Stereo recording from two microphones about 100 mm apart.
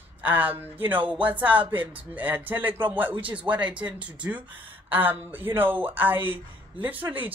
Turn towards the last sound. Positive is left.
turn(degrees=-15)  # may be behind; listen again after turning